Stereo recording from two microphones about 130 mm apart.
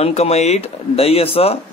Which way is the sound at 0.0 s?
55° left (ahead or behind).